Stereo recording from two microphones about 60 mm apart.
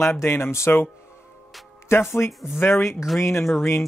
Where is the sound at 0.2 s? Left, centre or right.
Left.